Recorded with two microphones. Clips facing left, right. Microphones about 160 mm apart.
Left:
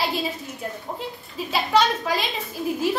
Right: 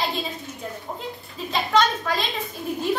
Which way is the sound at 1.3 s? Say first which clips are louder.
Left 1 dB; 10° left (ahead or behind).